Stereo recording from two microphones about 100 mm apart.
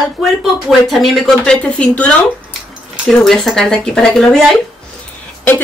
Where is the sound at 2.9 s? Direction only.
Centre (ahead or behind).